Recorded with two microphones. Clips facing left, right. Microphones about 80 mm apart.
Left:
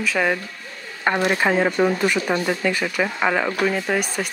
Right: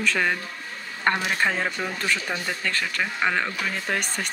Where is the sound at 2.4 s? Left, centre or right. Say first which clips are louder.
Left 6 dB; centre.